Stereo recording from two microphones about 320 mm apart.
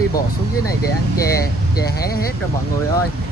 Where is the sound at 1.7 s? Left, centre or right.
Left.